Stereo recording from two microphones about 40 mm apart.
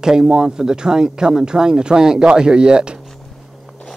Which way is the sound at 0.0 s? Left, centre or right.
Centre.